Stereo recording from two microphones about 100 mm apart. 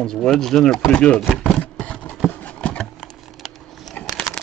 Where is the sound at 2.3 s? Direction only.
15° left (ahead or behind).